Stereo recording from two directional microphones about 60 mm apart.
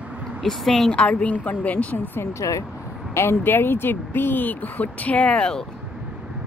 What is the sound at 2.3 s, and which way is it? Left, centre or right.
Speech, left.